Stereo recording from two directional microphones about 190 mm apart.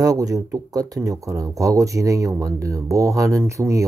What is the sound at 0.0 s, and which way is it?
Speech, 20° right (ahead or behind).